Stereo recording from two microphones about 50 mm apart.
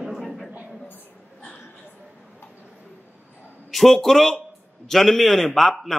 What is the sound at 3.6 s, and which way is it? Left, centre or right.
A man's voice, centre.